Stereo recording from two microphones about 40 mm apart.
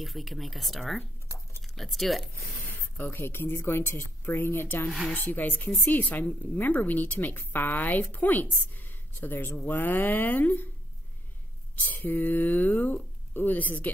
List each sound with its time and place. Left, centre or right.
0.0 s speech: centre
3.0 s a woman's voice: left
5.1 s a woman's voice: left
11.7 s speech: left